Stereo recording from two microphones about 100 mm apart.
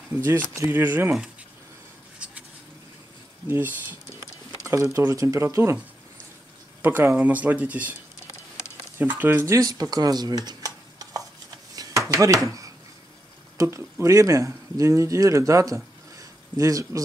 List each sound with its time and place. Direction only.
0.1 s speech: 20° right (ahead or behind)
2.1 s a sound: 10° right (ahead or behind)
3.4 s speech: 20° right (ahead or behind)
6.8 s speech: 20° right (ahead or behind)
8.9 s speech: 20° right (ahead or behind)
9.5 s speech: 35° right (ahead or behind)
11.7 s a sound: 35° right (ahead or behind)
12.2 s speech: 35° right (ahead or behind)